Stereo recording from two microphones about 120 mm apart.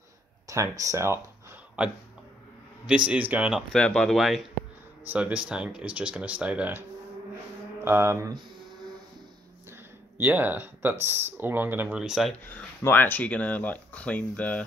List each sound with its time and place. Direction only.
0.5 s speech: 25° right (ahead or behind)
3.1 s speech: 10° right (ahead or behind)
3.7 s speech: 5° left (ahead or behind)
5.0 s speech: 10° right (ahead or behind)
7.8 s speech: 20° right (ahead or behind)
10.1 s speech: 15° right (ahead or behind)
12.4 s speech: 15° left (ahead or behind)